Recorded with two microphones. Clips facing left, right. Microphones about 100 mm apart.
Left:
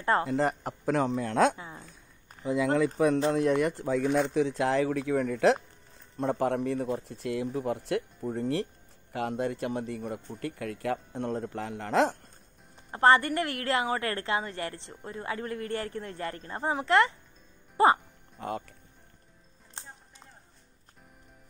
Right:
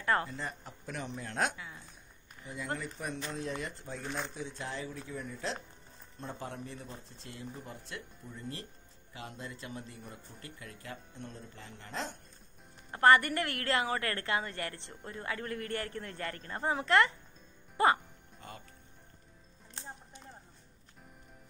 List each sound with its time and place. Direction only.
0.0 s a man's voice: 25° left (ahead or behind)
0.3 s a man's voice: 70° left (ahead or behind)
2.4 s speech: 90° left
3.3 s a man's voice: 70° left (ahead or behind); by 12.2 s 90° left
12.9 s a man's voice: 25° left (ahead or behind)